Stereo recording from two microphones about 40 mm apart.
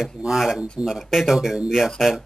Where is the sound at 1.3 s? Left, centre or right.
Centre.